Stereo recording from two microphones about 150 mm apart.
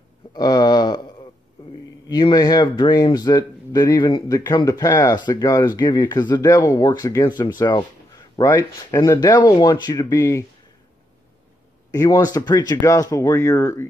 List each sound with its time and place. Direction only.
0.3 s speech: 25° left (ahead or behind)
2.0 s speech: 30° left (ahead or behind)
11.9 s speech: 20° left (ahead or behind)